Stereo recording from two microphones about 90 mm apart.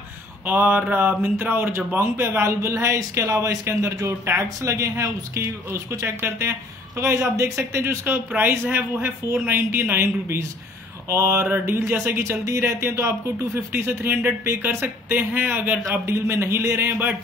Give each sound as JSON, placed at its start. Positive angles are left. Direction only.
{"t": 0.5, "sound": "speech", "side_deg": -20}
{"t": 16.1, "sound": "speech", "side_deg": -30}